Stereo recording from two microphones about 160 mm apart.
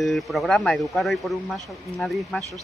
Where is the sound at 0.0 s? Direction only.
Centre (ahead or behind).